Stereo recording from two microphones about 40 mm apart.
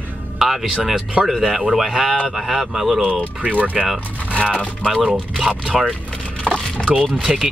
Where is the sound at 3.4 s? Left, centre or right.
Right.